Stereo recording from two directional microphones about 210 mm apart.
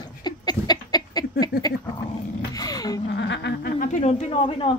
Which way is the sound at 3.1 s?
55° left (ahead or behind).